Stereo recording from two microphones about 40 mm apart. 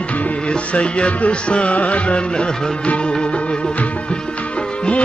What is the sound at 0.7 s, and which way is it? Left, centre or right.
Music, left.